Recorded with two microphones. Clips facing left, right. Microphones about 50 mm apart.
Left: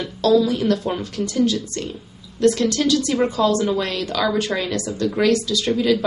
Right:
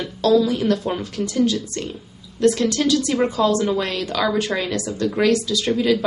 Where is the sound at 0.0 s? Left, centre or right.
Centre.